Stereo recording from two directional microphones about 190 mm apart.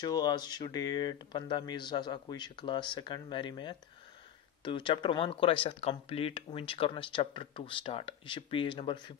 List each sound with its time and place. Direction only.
0.0 s speech: 20° left (ahead or behind)